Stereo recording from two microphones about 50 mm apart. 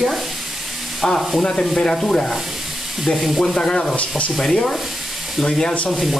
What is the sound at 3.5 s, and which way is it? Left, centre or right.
Speech, centre.